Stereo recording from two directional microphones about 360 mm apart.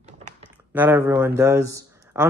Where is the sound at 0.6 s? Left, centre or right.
Centre.